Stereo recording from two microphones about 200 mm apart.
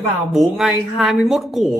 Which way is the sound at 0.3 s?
Centre (ahead or behind).